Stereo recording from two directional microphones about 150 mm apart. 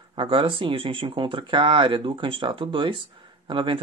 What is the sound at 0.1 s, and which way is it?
Speech, 35° right (ahead or behind).